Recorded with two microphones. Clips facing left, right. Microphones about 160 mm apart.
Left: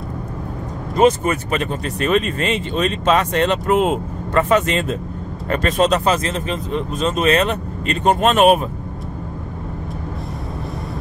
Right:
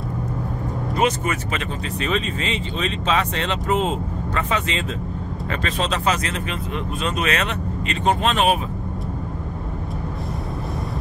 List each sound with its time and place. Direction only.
0.9 s speech: 45° left (ahead or behind)
7.2 s speech: 40° left (ahead or behind)